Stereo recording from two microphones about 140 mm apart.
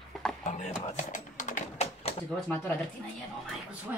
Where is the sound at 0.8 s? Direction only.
60° left (ahead or behind).